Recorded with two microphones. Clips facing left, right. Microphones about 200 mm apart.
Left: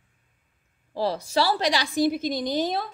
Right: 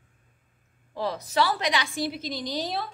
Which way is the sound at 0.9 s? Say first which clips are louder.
Left 2 dB; 30° left (ahead or behind).